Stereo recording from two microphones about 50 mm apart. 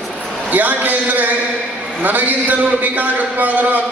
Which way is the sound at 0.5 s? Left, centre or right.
Right.